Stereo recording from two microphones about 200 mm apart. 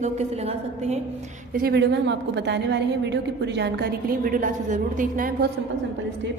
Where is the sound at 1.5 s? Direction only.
50° right (ahead or behind).